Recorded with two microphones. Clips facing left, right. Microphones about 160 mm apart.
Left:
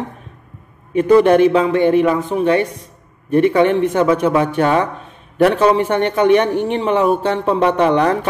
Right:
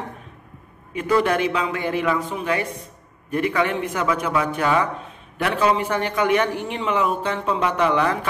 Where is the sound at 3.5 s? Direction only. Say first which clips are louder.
Left 8 dB; 30° left (ahead or behind).